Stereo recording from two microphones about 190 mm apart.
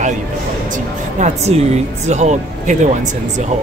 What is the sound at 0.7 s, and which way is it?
A woman's voice, 40° right (ahead or behind).